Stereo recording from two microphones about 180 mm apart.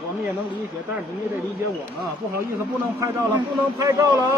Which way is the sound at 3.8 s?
15° right (ahead or behind).